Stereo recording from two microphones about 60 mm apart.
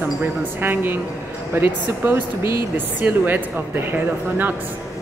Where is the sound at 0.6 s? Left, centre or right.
Right.